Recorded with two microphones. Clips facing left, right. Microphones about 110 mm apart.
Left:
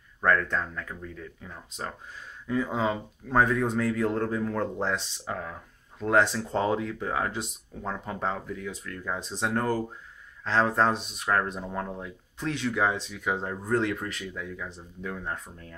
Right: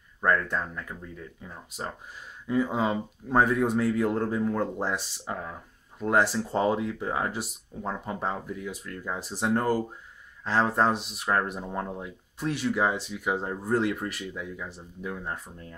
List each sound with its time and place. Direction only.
0.2 s speech: 10° right (ahead or behind)